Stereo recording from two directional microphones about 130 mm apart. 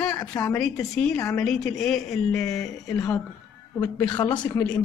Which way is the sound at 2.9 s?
25° left (ahead or behind).